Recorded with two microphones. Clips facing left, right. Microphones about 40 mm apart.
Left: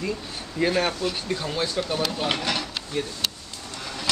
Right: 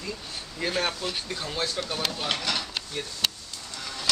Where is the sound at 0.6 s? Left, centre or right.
Centre.